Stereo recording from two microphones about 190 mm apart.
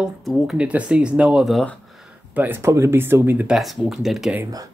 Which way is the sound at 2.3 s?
10° right (ahead or behind).